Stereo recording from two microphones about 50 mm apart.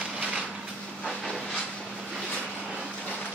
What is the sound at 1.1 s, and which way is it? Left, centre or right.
Train, centre.